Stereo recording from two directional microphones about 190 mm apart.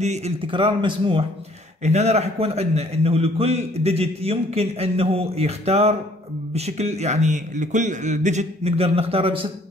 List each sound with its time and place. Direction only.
0.0 s a man's voice: 35° right (ahead or behind)